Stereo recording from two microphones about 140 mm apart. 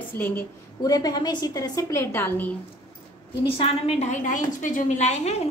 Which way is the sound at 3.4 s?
40° left (ahead or behind).